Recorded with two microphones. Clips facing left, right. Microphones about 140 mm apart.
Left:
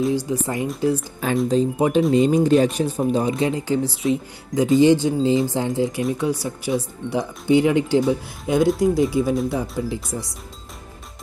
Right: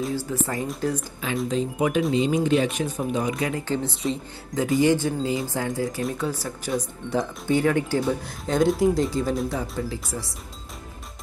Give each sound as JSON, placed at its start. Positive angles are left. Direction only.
{"t": 0.1, "sound": "speech", "side_deg": 15}
{"t": 1.5, "sound": "speech", "side_deg": 35}
{"t": 3.6, "sound": "speech", "side_deg": 10}
{"t": 4.6, "sound": "speech", "side_deg": 20}